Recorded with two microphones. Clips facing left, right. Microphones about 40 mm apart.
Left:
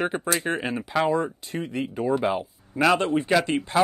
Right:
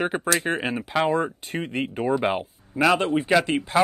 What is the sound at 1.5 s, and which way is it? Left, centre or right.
Speech, right.